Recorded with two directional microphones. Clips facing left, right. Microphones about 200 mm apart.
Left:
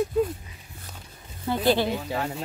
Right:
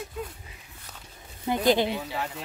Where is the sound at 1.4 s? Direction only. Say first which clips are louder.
Even; 20° right (ahead or behind).